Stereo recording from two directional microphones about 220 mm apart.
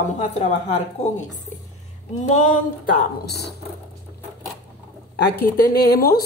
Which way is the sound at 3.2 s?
50° left (ahead or behind).